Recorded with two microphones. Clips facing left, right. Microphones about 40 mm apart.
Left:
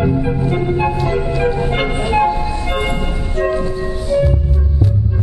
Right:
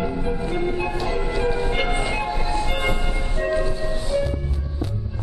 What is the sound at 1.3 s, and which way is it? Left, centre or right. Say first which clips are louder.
Music: left 6 dB; centre.